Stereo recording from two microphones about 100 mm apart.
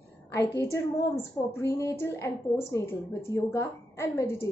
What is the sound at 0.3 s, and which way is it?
A woman's voice, 30° left (ahead or behind).